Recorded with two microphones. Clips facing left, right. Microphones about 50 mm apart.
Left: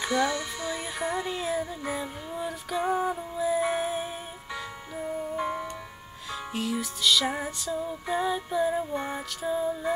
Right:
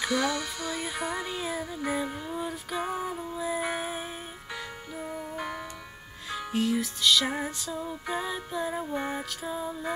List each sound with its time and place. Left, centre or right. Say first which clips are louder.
0.1 s music: left 4 dB; left
1.0 s music: left 6 dB; centre
6.3 s music: right 3 dB; centre